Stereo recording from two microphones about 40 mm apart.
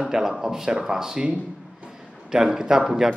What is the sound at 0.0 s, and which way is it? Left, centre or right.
Speech, centre.